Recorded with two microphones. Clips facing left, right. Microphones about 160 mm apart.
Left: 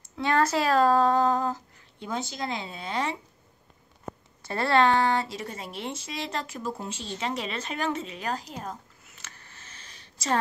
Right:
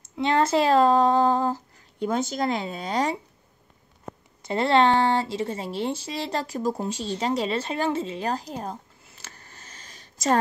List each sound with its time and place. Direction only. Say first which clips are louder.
0.2 s speech: right 3 dB; 25° right (ahead or behind)
2.0 s speech: right 7 dB; 45° right (ahead or behind)
4.4 s speech: right 3 dB; 20° right (ahead or behind); by 10.3 s 40° right (ahead or behind)